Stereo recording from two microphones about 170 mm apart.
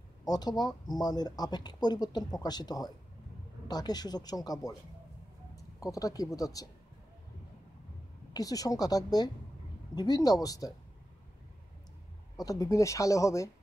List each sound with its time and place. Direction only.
0.2 s speech: 25° left (ahead or behind)
8.3 s speech: 20° left (ahead or behind)
12.4 s speech: 20° left (ahead or behind)